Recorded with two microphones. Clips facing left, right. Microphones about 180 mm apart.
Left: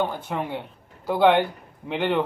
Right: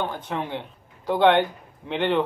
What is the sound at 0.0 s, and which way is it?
Speech, 10° left (ahead or behind).